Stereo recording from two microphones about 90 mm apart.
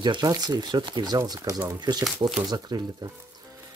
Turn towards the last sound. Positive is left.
turn(degrees=-50)  # may be behind; listen again after turning